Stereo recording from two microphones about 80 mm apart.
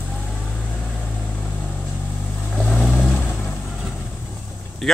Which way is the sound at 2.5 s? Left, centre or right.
Centre.